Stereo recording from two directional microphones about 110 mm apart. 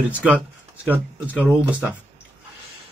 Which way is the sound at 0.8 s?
15° right (ahead or behind).